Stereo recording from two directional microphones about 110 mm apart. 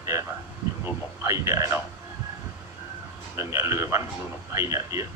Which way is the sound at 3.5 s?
30° right (ahead or behind).